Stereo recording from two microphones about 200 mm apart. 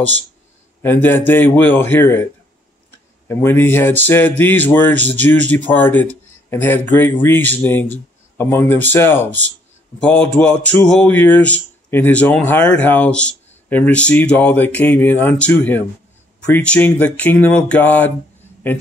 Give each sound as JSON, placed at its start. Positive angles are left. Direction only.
{"t": 0.8, "sound": "speech", "side_deg": 10}
{"t": 3.3, "sound": "speech", "side_deg": 10}
{"t": 4.9, "sound": "speech", "side_deg": -60}
{"t": 5.3, "sound": "speech", "side_deg": 10}